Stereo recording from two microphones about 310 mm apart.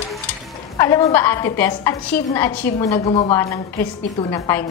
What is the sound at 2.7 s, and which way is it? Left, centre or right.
A woman's voice, centre.